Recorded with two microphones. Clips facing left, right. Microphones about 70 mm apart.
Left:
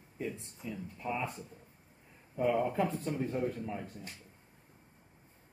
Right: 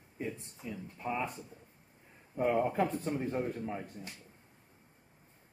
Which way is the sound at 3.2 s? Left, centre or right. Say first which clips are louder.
Even; right.